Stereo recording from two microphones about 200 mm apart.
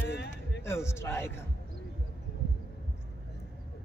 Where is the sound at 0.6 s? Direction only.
15° left (ahead or behind).